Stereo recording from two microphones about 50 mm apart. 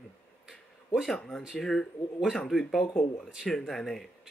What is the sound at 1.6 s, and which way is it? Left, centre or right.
Speech, centre.